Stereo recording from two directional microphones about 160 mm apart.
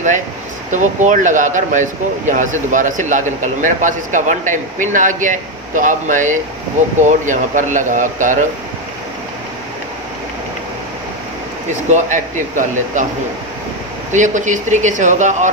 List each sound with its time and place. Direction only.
0.7 s speech: 50° right (ahead or behind)
11.9 s speech: 50° right (ahead or behind)
14.1 s speech: 50° right (ahead or behind)